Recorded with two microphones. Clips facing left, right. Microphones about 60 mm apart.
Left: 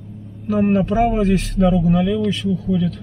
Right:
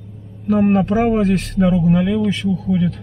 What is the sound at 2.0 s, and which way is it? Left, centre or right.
Speech, right.